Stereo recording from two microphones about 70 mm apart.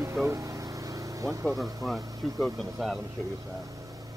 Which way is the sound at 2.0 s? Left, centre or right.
Right.